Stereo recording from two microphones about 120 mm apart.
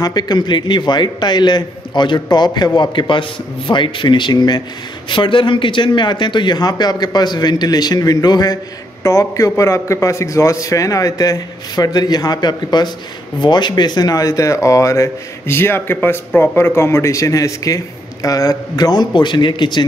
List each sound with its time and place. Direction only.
0.0 s a man's voice: 35° left (ahead or behind)